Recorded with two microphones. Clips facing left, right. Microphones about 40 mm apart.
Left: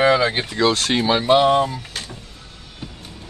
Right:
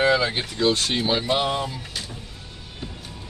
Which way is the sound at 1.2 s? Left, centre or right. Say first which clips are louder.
Left 8 dB; left.